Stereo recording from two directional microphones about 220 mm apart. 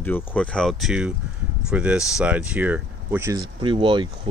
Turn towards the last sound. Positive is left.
turn(degrees=-20)  # may be behind; listen again after turning